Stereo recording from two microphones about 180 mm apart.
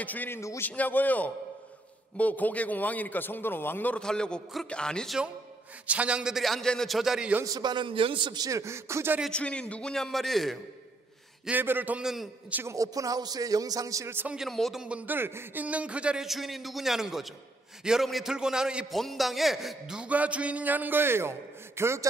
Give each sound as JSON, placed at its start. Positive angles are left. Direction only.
{"t": 0.0, "sound": "a man's voice", "side_deg": 10}
{"t": 7.4, "sound": "a man's voice", "side_deg": -20}
{"t": 9.2, "sound": "a man's voice", "side_deg": 5}
{"t": 11.4, "sound": "a man's voice", "side_deg": -10}